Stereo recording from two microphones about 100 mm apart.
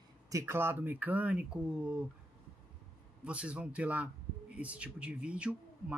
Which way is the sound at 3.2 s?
10° right (ahead or behind).